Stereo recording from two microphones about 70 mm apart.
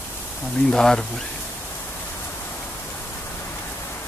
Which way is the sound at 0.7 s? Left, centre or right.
Centre.